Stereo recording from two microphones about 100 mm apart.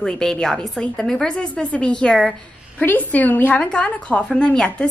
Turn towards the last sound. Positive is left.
turn(degrees=10)  # may be behind; listen again after turning